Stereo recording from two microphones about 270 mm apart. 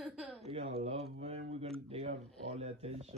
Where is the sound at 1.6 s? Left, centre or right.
Right.